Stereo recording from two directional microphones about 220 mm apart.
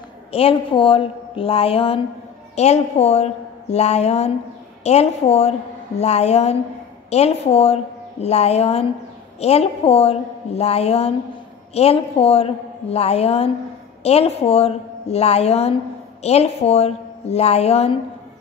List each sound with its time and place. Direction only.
0.3 s a woman's voice: 25° left (ahead or behind)